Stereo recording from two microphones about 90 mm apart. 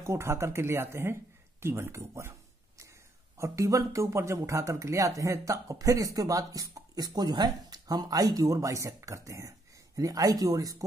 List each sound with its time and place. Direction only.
0.0 s speech: 30° right (ahead or behind)
3.3 s speech: 35° right (ahead or behind)